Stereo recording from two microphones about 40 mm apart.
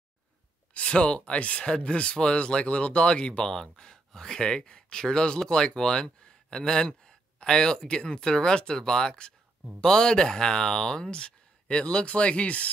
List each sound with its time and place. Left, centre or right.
0.7 s speech: left